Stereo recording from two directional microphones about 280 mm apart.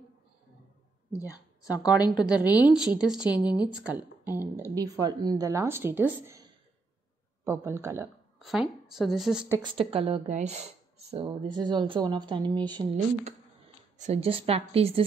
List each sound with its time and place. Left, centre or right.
1.6 s a woman's voice: centre
2.1 s a woman's voice: centre
2.4 s a woman's voice: centre
3.3 s a woman's voice: centre
4.4 s a woman's voice: centre
4.7 s speech: centre
7.4 s a woman's voice: centre
9.6 s a woman's voice: centre